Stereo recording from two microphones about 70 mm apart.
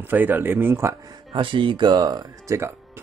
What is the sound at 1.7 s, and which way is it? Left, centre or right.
Speech, right.